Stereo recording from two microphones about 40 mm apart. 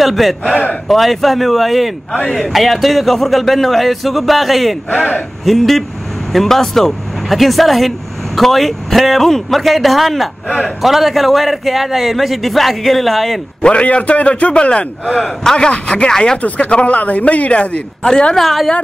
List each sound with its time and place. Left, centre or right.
0.0 s a man's voice: centre
4.9 s a man's voice: left
5.4 s a man's voice: centre
13.6 s a man's voice: left
16.4 s a man's voice: left
18.3 s a man's voice: centre